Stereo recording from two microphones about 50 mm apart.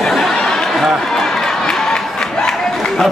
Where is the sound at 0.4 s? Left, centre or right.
Centre.